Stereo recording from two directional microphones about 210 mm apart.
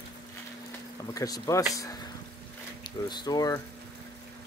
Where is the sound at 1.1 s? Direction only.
15° left (ahead or behind).